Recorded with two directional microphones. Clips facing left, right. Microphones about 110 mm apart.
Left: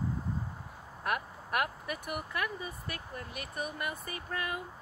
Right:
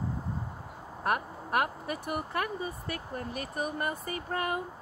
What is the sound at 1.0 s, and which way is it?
Speech, 30° right (ahead or behind).